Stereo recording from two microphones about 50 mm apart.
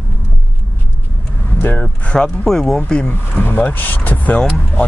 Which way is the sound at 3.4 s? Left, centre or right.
Left.